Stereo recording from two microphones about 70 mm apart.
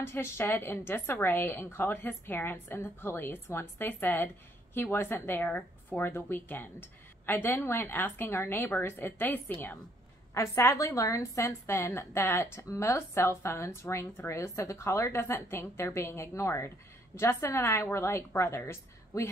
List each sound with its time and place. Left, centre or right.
0.0 s speech: left
5.9 s speech: left
10.3 s a woman's voice: left